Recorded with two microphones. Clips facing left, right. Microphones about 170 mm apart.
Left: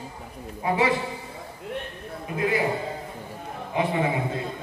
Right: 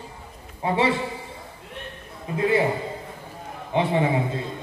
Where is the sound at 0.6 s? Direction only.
30° right (ahead or behind).